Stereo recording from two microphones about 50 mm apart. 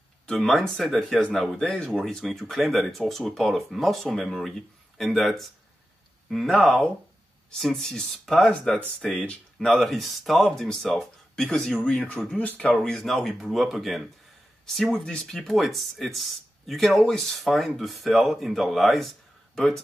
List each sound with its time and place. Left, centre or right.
0.4 s speech: centre
8.6 s speech: left
9.8 s speech: centre
12.4 s speech: left
12.8 s speech: centre
13.4 s speech: centre